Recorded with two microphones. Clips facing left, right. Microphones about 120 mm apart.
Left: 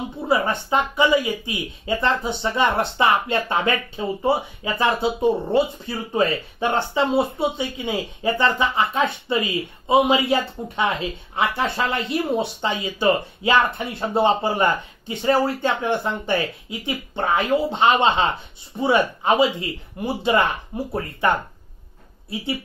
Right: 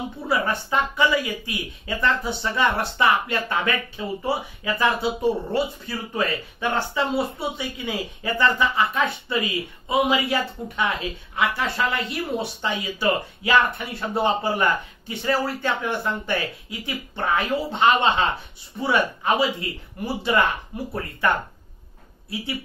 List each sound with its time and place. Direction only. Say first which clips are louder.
0.3 s speech: left 3 dB; 25° left (ahead or behind)